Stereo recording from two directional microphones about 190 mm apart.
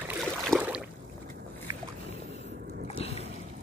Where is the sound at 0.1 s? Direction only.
Centre (ahead or behind).